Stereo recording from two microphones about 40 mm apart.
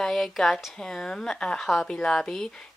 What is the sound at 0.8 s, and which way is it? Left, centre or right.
Speech, centre.